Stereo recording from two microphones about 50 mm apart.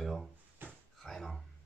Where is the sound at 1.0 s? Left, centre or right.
Centre.